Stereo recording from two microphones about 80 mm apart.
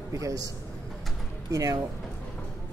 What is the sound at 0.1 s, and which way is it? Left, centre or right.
Speech, right.